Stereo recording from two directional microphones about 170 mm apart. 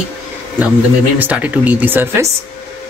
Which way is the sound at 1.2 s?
10° right (ahead or behind).